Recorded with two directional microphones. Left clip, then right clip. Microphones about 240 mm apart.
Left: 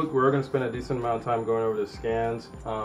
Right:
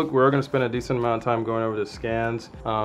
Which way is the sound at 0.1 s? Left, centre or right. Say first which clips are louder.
Right 4 dB; right.